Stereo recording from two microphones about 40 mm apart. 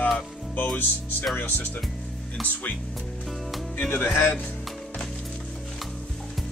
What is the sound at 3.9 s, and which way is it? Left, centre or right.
Speech, left.